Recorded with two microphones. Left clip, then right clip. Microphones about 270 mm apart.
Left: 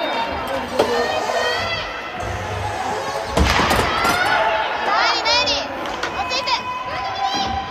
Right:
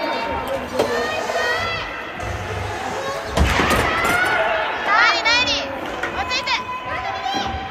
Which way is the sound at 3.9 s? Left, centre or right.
Left.